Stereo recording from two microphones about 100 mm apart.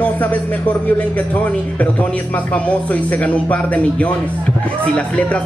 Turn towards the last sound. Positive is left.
turn(degrees=10)  # may be behind; listen again after turning